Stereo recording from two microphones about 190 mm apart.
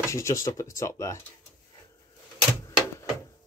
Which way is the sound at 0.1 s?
15° left (ahead or behind).